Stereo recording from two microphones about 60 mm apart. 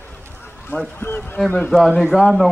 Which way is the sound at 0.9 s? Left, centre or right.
Left.